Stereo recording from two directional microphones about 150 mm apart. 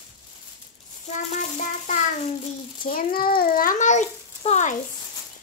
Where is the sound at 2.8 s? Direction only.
75° left (ahead or behind); by 4.7 s 50° left (ahead or behind).